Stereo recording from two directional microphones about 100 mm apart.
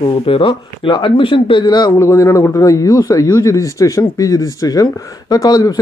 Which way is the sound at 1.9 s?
30° left (ahead or behind).